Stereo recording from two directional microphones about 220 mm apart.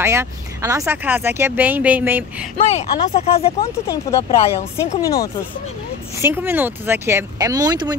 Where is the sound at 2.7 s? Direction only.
30° left (ahead or behind).